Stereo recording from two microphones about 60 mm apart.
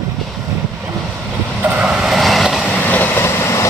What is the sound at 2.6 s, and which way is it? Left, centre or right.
Vehicle, left.